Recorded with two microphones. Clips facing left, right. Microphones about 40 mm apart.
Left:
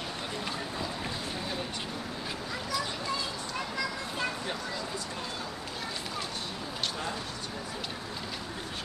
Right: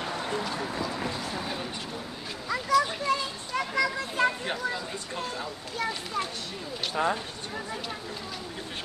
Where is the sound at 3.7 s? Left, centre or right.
Right.